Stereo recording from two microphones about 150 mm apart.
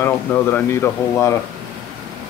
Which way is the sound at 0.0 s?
15° left (ahead or behind).